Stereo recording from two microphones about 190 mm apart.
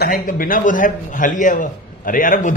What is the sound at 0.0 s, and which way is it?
A man's voice, 45° left (ahead or behind).